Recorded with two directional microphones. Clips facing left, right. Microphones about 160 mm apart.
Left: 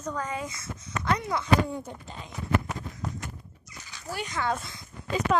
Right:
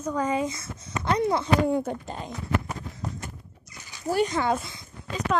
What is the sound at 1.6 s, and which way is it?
Speech, 65° right (ahead or behind).